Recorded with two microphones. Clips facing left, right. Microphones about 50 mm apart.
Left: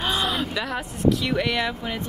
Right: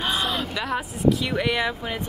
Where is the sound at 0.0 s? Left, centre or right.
Centre.